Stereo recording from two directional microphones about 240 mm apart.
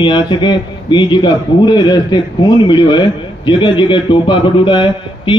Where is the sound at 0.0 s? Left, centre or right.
Centre.